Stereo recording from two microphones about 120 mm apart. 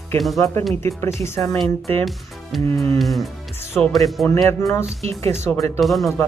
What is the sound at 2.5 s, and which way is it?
Speech, centre (ahead or behind).